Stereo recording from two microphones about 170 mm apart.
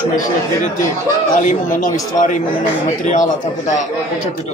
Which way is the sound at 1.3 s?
50° left (ahead or behind).